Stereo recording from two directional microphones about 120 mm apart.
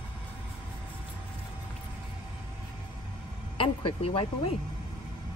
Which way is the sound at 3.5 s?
50° left (ahead or behind).